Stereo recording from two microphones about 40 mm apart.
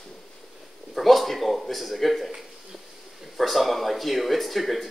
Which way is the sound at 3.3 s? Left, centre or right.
Centre.